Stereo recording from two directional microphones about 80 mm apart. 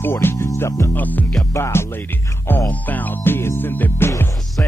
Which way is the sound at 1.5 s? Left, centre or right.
Left.